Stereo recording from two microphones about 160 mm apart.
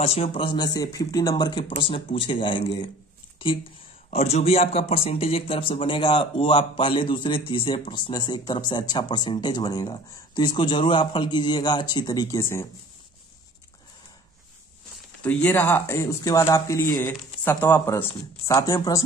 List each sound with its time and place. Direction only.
0.0 s speech: 40° left (ahead or behind)
4.1 s speech: 40° left (ahead or behind); by 12.6 s 20° left (ahead or behind)
15.2 s speech: 10° left (ahead or behind)